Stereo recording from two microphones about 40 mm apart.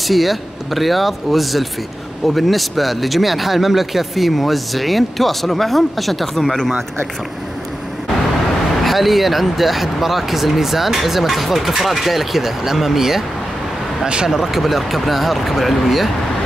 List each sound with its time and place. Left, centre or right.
0.0 s speech: centre
8.8 s speech: centre
14.0 s speech: centre
14.4 s speech: centre